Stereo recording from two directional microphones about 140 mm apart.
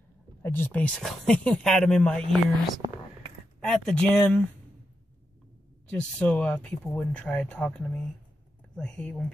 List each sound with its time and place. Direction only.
0.4 s speech: 15° left (ahead or behind)
5.9 s speech: 10° left (ahead or behind)